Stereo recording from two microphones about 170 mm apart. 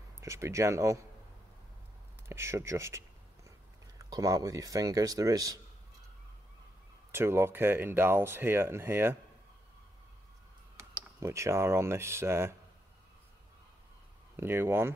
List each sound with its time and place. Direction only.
0.2 s speech: 15° right (ahead or behind)
2.2 s speech: 15° right (ahead or behind)
4.1 s speech: 20° right (ahead or behind)
7.1 s speech: 15° right (ahead or behind)
10.8 s speech: 15° right (ahead or behind)
14.3 s speech: 15° right (ahead or behind)